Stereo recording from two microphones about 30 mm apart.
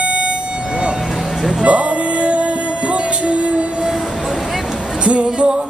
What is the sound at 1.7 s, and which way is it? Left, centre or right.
Music, right.